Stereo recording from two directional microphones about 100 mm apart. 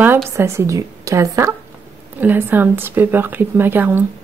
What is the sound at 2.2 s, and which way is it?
Speech, 20° right (ahead or behind).